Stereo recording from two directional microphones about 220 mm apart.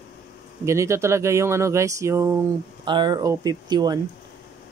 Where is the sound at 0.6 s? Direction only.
10° right (ahead or behind).